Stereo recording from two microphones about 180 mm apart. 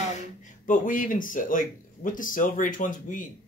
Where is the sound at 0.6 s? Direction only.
45° left (ahead or behind).